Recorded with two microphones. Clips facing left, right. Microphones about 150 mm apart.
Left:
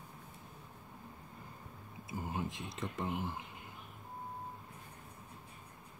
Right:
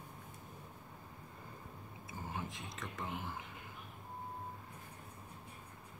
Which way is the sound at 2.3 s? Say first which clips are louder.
Left 3 dB; 20° left (ahead or behind).